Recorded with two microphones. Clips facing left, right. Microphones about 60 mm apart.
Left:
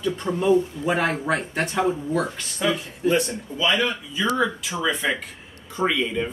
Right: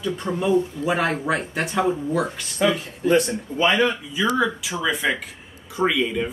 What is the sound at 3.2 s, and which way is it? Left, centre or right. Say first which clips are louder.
Speech: right 3 dB; right.